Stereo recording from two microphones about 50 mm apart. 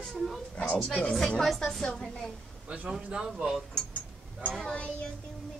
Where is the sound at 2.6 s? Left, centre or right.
Right.